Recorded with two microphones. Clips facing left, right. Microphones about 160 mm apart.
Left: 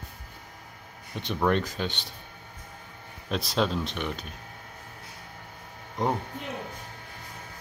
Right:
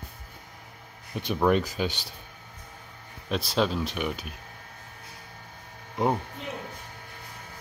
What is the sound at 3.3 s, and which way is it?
Speech, centre (ahead or behind).